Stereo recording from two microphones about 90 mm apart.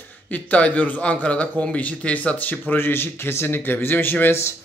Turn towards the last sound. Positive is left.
turn(degrees=30)  # may be behind; listen again after turning